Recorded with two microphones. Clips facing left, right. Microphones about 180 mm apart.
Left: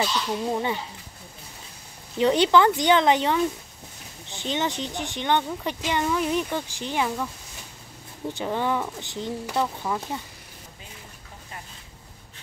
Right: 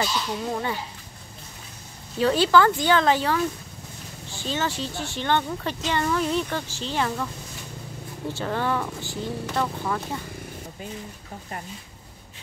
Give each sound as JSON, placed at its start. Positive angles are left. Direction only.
{"t": 0.0, "sound": "speech", "side_deg": 15}
{"t": 2.1, "sound": "speech", "side_deg": 20}
{"t": 8.3, "sound": "speech", "side_deg": 15}